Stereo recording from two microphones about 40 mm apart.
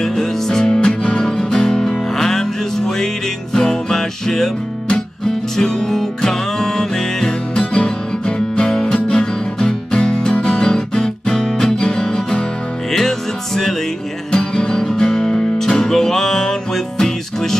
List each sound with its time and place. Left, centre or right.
0.0 s music: centre
3.5 s music: centre
5.6 s music: centre
14.3 s music: left